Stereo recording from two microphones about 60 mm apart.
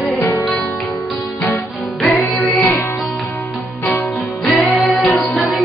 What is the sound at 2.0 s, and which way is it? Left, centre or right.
Music, centre.